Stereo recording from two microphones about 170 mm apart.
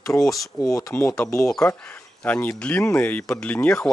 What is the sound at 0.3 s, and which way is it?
Speech, 20° left (ahead or behind).